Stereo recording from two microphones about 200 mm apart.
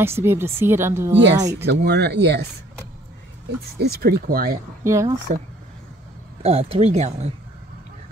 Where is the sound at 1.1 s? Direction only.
60° right (ahead or behind).